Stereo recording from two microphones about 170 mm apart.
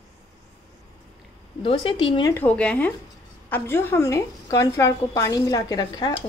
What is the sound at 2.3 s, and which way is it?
A woman's voice, 10° left (ahead or behind).